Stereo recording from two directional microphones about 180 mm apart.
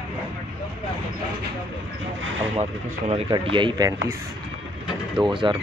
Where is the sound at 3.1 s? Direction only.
30° right (ahead or behind).